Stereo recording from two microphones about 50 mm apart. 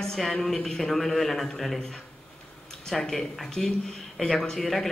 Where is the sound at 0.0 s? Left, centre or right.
Centre.